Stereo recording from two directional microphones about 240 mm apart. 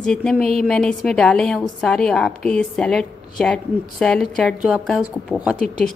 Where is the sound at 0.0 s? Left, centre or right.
Centre.